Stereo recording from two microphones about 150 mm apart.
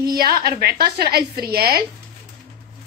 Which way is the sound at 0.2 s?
90° right.